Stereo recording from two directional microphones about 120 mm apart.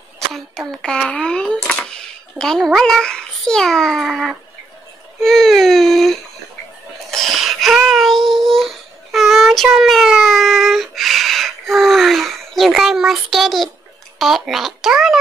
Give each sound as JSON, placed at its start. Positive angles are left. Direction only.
{"t": 0.3, "sound": "a sound", "side_deg": 5}
{"t": 5.2, "sound": "baby cry", "side_deg": 5}
{"t": 7.1, "sound": "child singing", "side_deg": 0}
{"t": 14.1, "sound": "speech", "side_deg": 0}